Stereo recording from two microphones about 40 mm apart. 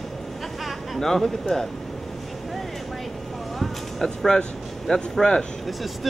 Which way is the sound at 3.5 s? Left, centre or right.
Centre.